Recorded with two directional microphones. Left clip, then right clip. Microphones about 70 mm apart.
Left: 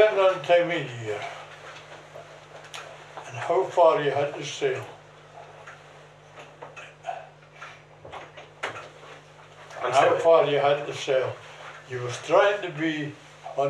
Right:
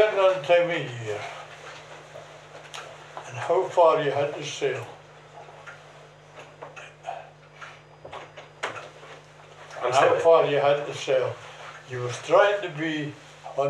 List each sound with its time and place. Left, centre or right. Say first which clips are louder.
0.0 s a man's voice: left 1 dB; centre
3.3 s speech: even; centre
7.1 s a sound: left 1 dB; centre
9.8 s speech: even; centre
10.1 s speech: even; centre